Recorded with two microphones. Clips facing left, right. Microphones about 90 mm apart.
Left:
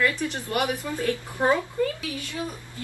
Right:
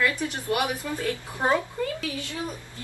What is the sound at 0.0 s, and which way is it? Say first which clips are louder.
Speech: left 1 dB; 15° right (ahead or behind).